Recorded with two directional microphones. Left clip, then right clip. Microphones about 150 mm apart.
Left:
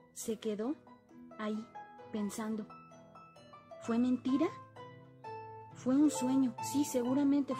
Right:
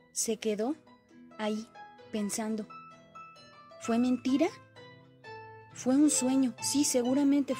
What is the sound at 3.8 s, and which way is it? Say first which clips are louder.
Speech: right 4 dB; 25° right (ahead or behind).